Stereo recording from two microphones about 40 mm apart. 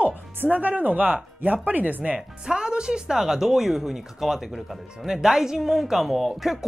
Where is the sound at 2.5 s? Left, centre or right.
Right.